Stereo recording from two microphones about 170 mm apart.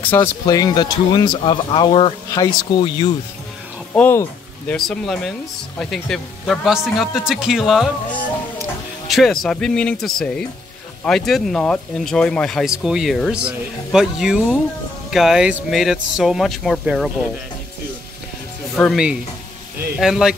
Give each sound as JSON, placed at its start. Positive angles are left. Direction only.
{"t": 0.0, "sound": "speech", "side_deg": 10}
{"t": 0.5, "sound": "speech", "side_deg": 20}
{"t": 3.9, "sound": "speech", "side_deg": 10}
{"t": 4.7, "sound": "speech", "side_deg": 0}
{"t": 9.0, "sound": "speech", "side_deg": 0}
{"t": 18.8, "sound": "speech", "side_deg": 0}